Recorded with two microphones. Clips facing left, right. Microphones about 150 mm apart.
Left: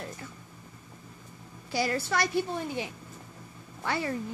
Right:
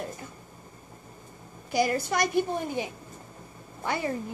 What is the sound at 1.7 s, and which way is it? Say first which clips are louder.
A woman's voice: right 3 dB; 15° right (ahead or behind).